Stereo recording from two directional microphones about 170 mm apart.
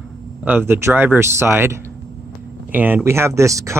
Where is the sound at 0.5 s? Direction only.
10° right (ahead or behind).